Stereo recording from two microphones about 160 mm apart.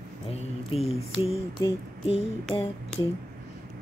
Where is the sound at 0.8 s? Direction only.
40° left (ahead or behind).